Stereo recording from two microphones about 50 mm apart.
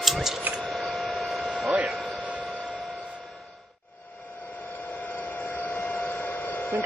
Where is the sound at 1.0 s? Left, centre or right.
Centre.